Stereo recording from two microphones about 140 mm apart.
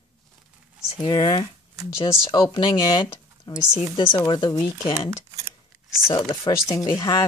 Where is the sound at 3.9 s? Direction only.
30° left (ahead or behind).